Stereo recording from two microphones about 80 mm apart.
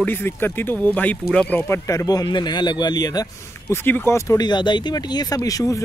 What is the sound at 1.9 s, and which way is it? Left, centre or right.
Speech, left.